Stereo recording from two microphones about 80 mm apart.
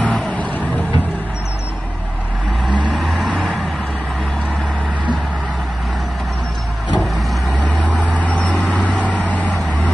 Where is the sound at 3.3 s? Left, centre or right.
Centre.